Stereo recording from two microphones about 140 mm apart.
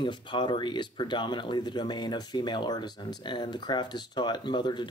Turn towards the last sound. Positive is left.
turn(degrees=35)  # may be behind; listen again after turning